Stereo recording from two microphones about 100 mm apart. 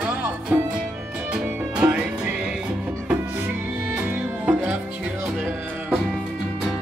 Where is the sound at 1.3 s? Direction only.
10° right (ahead or behind).